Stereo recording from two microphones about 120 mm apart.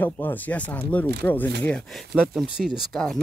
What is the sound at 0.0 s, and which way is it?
Speech, 15° left (ahead or behind).